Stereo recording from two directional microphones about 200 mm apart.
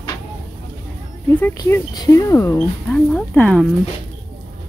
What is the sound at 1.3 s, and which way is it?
Speech, 10° left (ahead or behind).